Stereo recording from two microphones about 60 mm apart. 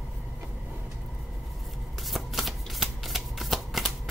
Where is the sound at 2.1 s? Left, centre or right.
Centre.